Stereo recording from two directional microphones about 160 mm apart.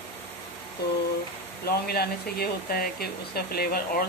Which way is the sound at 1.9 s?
75° left (ahead or behind).